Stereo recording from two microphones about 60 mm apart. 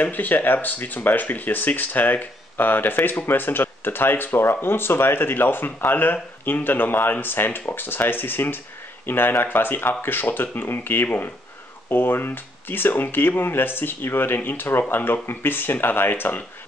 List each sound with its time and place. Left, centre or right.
0.0 s speech: left